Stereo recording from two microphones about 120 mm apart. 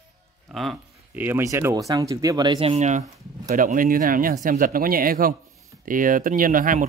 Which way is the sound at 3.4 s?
90° right.